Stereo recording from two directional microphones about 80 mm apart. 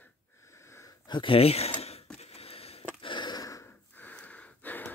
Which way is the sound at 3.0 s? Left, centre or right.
Left.